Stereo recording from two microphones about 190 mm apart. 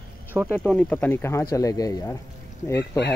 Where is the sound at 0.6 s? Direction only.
5° left (ahead or behind).